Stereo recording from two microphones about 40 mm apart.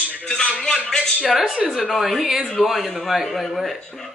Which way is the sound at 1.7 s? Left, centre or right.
Centre.